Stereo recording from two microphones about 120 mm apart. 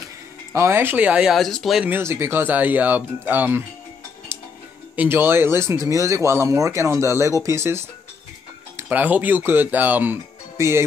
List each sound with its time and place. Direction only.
0.0 s speech: 20° right (ahead or behind); by 1.9 s centre (ahead or behind)
1.9 s speech: 20° right (ahead or behind)
4.9 s speech: 15° right (ahead or behind)
8.8 s speech: 15° right (ahead or behind)